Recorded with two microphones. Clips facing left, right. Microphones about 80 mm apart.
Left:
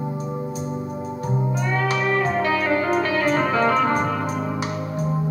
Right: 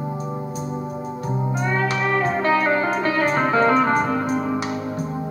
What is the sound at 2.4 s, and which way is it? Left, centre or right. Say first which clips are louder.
Music: right 2 dB; right.